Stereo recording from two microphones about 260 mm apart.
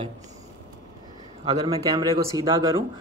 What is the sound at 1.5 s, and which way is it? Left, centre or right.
A man's voice, centre.